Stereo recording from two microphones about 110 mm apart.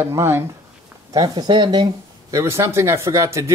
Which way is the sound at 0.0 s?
20° right (ahead or behind).